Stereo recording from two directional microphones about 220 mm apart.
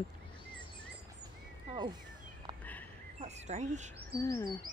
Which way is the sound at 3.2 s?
30° right (ahead or behind).